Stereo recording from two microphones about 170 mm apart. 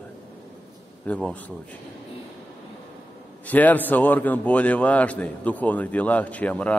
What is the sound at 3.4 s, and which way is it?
A man's voice, 10° left (ahead or behind).